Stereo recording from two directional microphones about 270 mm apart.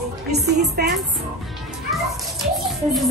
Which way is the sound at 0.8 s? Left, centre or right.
Right.